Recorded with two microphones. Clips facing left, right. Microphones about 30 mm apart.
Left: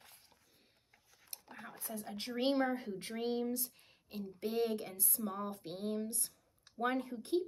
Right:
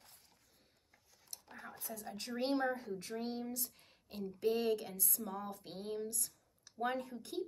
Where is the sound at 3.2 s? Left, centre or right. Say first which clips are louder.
Left 10 dB; left.